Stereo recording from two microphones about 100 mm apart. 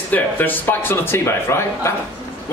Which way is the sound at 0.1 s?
20° left (ahead or behind).